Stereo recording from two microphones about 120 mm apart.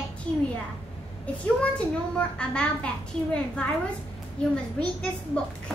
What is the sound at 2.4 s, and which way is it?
A woman's voice, 10° left (ahead or behind).